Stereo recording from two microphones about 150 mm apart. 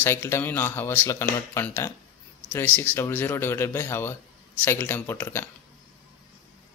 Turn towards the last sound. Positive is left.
turn(degrees=15)  # may be behind; listen again after turning